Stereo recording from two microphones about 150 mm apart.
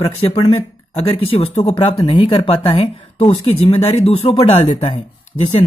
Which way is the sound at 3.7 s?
45° left (ahead or behind).